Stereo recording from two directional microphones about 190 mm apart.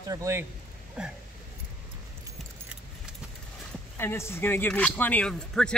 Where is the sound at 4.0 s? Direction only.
15° left (ahead or behind).